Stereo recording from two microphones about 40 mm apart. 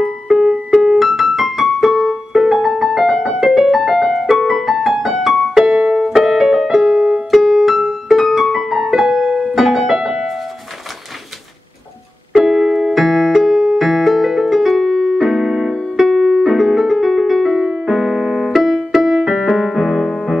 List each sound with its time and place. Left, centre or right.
0.0 s keyboard: centre
3.1 s music: centre
3.3 s piano: centre
4.4 s music: centre
7.2 s piano: centre
9.3 s music: right
9.6 s music: centre
12.4 s music: centre
15.1 s keyboard: centre
16.1 s piano: centre
16.4 s music: centre
17.6 s piano: centre
18.5 s music: centre